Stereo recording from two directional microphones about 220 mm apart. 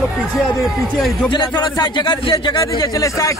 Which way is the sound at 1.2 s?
20° left (ahead or behind).